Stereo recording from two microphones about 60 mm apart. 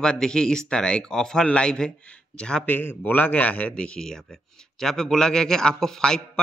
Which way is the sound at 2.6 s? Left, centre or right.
Left.